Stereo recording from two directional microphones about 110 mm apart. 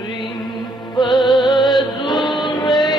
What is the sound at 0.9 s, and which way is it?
Music, 45° left (ahead or behind).